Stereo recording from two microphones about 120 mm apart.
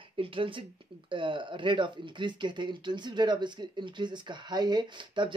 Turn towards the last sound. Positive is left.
turn(degrees=-40)  # may be behind; listen again after turning